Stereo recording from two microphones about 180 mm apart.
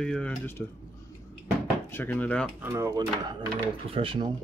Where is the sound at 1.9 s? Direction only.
10° left (ahead or behind).